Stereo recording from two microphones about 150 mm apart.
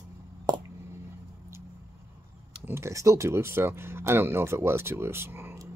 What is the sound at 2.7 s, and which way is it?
Speech, 20° right (ahead or behind).